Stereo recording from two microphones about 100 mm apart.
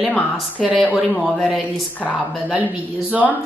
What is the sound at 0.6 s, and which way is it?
Speech, centre (ahead or behind).